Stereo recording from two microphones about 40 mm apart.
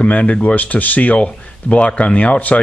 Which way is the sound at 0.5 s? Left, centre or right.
Left.